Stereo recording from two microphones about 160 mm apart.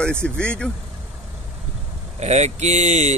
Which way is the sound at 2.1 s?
45° right (ahead or behind).